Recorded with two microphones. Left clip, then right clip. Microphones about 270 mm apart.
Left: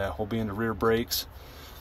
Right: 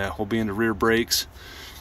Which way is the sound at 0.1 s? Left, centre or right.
Centre.